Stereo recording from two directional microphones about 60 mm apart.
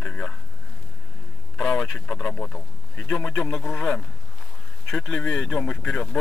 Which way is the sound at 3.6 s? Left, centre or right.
Centre.